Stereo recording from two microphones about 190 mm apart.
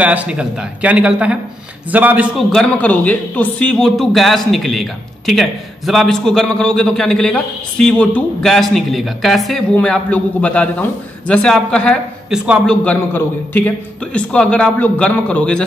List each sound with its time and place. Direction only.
0.0 s speech: 5° right (ahead or behind)
2.5 s a man's voice: 5° left (ahead or behind)